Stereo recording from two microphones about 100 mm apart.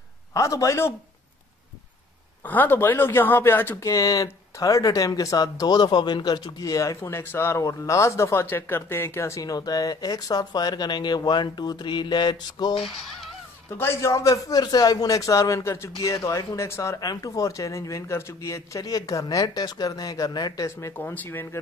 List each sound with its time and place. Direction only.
0.3 s a man's voice: 35° left (ahead or behind)
2.4 s speech: 20° left (ahead or behind)
3.8 s a man's voice: 35° left (ahead or behind)
7.0 s a man's voice: 25° left (ahead or behind); by 12.7 s 45° left (ahead or behind)
13.7 s a man's voice: 25° left (ahead or behind)
21.0 s speech: 20° left (ahead or behind)